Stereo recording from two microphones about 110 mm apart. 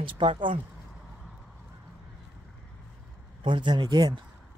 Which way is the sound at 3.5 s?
45° right (ahead or behind).